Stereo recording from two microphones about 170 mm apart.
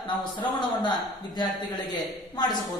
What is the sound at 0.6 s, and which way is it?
A man's voice, 25° left (ahead or behind).